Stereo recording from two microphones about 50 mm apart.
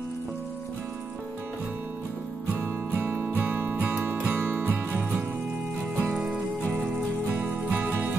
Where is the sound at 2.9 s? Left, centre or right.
Right.